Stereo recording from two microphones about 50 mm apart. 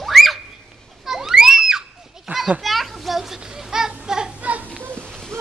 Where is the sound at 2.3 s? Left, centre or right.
Right.